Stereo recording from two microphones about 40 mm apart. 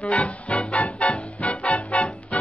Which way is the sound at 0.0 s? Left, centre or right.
Left.